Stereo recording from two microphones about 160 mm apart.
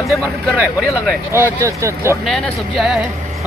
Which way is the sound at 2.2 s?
Centre (ahead or behind).